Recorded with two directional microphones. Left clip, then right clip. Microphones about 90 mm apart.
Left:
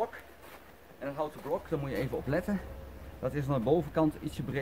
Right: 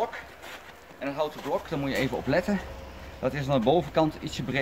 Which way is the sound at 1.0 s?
30° left (ahead or behind).